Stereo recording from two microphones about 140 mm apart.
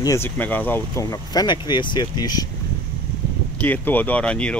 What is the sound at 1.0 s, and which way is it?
Speech, 30° left (ahead or behind).